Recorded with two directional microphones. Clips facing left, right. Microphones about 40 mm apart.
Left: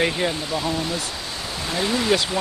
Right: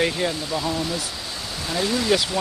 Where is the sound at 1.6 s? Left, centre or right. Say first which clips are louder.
Even; left.